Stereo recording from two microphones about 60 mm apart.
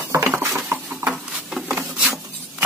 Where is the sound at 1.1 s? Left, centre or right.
Centre.